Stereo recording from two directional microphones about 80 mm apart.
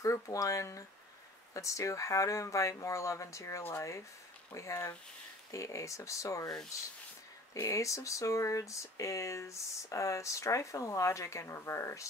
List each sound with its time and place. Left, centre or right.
0.0 s speech: left